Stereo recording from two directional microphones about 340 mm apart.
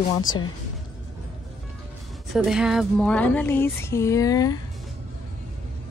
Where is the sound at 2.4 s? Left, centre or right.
Centre.